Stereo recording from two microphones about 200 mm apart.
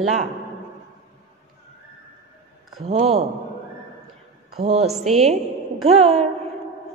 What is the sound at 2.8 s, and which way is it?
Speech, 30° right (ahead or behind).